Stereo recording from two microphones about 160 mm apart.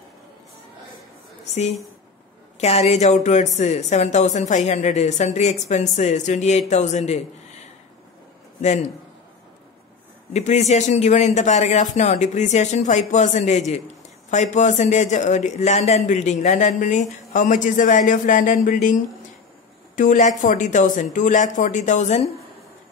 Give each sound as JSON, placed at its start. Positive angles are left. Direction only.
{"t": 2.6, "sound": "speech", "side_deg": 45}
{"t": 8.5, "sound": "a man's voice", "side_deg": 45}
{"t": 10.3, "sound": "speech", "side_deg": 45}
{"t": 20.0, "sound": "speech", "side_deg": 50}